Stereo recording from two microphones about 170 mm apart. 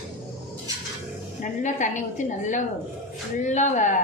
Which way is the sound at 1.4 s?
45° left (ahead or behind).